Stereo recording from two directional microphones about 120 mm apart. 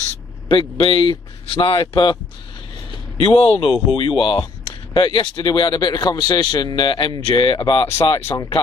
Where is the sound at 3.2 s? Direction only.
50° left (ahead or behind).